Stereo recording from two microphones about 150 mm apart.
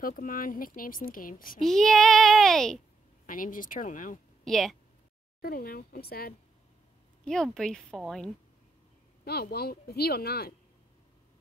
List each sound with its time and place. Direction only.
0.0 s speech: 65° left (ahead or behind)
1.6 s a child's voice: centre (ahead or behind)
3.3 s speech: 65° left (ahead or behind)
4.5 s a child's voice: centre (ahead or behind)
5.4 s a woman's voice: 85° left
7.2 s a child's voice: 5° left (ahead or behind)
9.2 s a woman's voice: 90° left